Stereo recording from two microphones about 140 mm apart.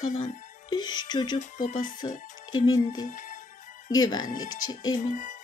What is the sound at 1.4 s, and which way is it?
Speech, 70° left (ahead or behind).